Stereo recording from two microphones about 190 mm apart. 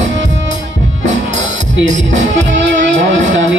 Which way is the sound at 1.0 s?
40° right (ahead or behind).